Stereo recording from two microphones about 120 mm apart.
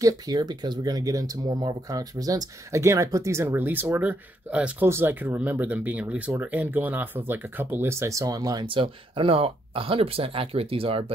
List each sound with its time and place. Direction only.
0.0 s speech: 35° right (ahead or behind); by 11.1 s 50° right (ahead or behind)